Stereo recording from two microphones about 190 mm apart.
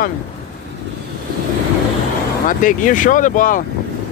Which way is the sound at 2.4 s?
45° left (ahead or behind).